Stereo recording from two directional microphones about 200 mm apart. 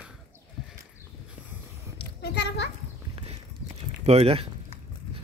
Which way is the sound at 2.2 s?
55° left (ahead or behind).